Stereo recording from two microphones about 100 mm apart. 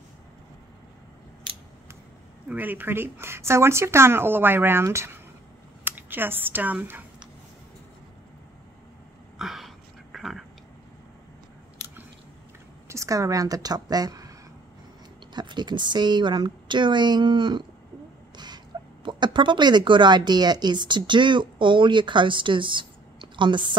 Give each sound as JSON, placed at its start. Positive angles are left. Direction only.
{"t": 2.5, "sound": "speech", "side_deg": -20}
{"t": 9.4, "sound": "a sound", "side_deg": -5}
{"t": 12.8, "sound": "a woman's voice", "side_deg": -30}
{"t": 15.3, "sound": "a woman's voice", "side_deg": -50}
{"t": 18.7, "sound": "a sound", "side_deg": -40}
{"t": 19.0, "sound": "a woman's voice", "side_deg": -50}